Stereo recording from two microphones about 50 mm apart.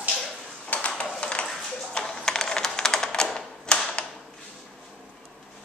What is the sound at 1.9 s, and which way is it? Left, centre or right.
Typewriter, centre.